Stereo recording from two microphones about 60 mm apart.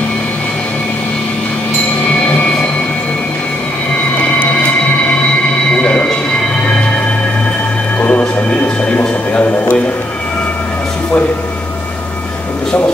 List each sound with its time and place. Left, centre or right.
4.2 s music: left
5.8 s a sound: centre
8.1 s music: centre